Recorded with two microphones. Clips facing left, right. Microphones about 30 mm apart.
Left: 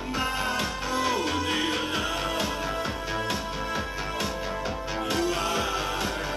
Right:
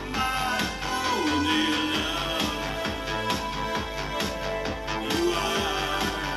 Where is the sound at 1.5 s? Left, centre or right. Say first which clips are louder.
Right 2 dB; centre.